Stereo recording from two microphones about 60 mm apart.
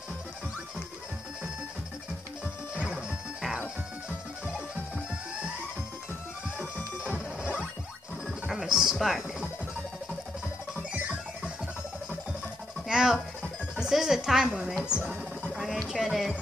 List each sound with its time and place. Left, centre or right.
2.7 s music: centre
8.3 s music: centre
10.9 s music: centre
12.8 s music: centre
14.9 s speech: centre
15.5 s music: centre